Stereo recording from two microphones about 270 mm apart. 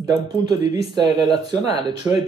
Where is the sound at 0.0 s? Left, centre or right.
Centre.